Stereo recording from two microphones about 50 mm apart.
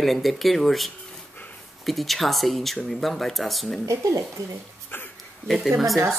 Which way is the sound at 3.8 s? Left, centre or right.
Right.